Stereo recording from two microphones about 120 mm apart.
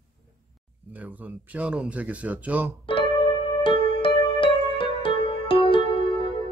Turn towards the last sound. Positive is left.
turn(degrees=50)  # may be behind; listen again after turning